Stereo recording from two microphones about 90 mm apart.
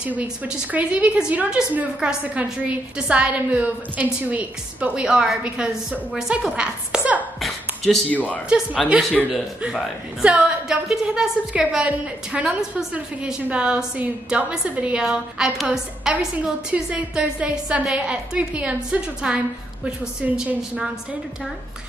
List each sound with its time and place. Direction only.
0.0 s a woman's voice: 15° right (ahead or behind)
7.3 s a sound: centre (ahead or behind)
8.1 s speech: 15° left (ahead or behind)
8.8 s a woman's voice: 10° right (ahead or behind)
10.2 s a woman's voice: 10° right (ahead or behind)